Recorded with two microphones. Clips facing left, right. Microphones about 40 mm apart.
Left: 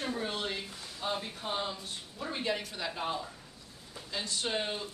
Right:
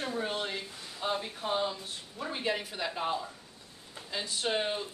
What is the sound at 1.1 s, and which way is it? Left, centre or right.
Speech, centre.